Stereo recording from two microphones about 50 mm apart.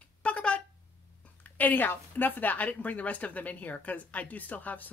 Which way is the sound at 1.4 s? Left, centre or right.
Left.